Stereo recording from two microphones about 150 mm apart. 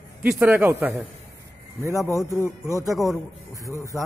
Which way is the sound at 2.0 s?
20° left (ahead or behind).